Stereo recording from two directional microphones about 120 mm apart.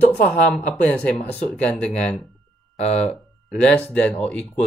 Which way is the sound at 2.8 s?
65° left (ahead or behind).